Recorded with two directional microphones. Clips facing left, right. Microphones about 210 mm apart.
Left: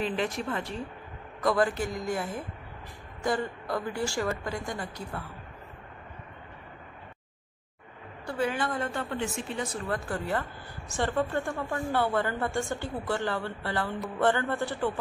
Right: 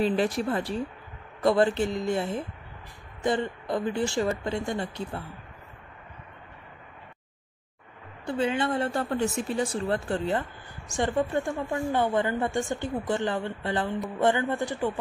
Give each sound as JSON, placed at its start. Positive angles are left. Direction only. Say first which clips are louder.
{"t": 0.0, "sound": "speech", "louder": "right 5 dB", "side_deg": -35}
{"t": 8.3, "sound": "speech", "louder": "right 3 dB", "side_deg": -25}